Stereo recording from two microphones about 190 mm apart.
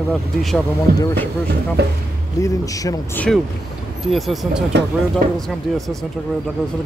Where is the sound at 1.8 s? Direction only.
60° right (ahead or behind).